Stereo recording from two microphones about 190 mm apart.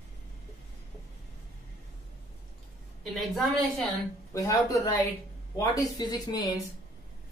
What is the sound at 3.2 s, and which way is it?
Speech, centre (ahead or behind).